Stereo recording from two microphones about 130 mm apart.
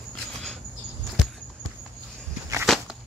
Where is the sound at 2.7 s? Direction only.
5° left (ahead or behind).